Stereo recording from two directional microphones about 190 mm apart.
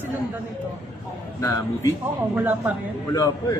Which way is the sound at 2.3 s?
10° right (ahead or behind).